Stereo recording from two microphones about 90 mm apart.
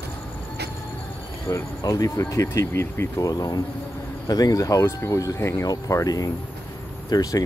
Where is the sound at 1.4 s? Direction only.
40° left (ahead or behind).